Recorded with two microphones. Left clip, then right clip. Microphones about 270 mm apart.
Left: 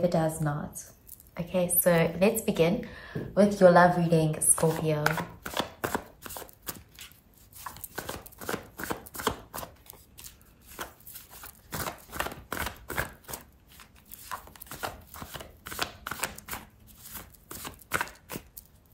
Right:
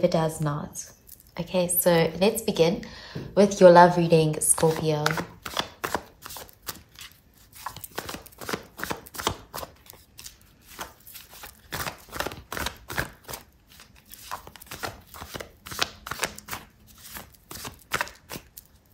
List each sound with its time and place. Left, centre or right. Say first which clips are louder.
0.0 s speech: right 3 dB; centre
5.0 s chopping: right 2 dB; centre
17.1 s a sound: right 4 dB; centre